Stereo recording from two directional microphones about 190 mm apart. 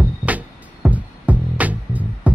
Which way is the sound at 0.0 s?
10° right (ahead or behind).